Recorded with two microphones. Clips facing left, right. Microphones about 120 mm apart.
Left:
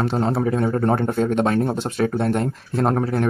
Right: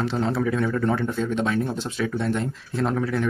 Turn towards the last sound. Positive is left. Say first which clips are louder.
# left 4 dB
turn(degrees=45)  # may be behind; listen again after turning